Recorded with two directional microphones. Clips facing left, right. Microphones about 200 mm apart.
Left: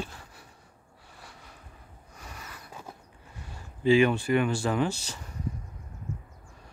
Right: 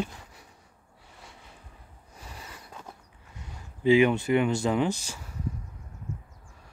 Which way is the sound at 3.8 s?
20° right (ahead or behind).